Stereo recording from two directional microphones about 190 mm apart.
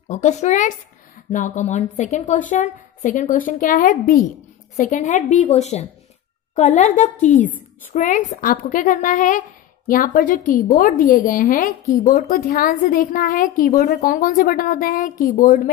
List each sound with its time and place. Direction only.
0.1 s a woman's voice: 40° left (ahead or behind)